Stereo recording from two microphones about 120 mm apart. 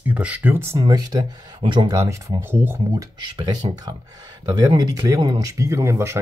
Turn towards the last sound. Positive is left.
turn(degrees=-20)  # may be behind; listen again after turning